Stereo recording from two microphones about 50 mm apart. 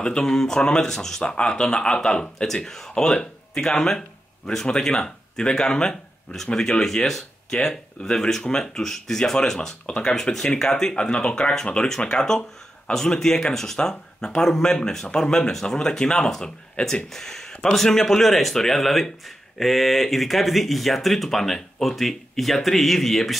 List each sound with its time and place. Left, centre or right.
0.2 s speech: centre
17.5 s a sound: centre
17.7 s speech: centre